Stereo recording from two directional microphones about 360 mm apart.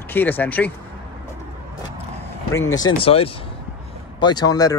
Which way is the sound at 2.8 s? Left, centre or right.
Centre.